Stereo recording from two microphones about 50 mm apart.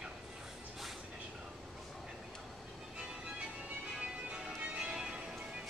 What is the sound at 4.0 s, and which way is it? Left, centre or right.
Music, right.